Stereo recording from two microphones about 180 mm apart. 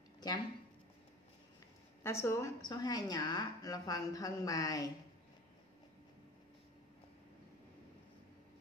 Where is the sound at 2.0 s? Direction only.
15° left (ahead or behind).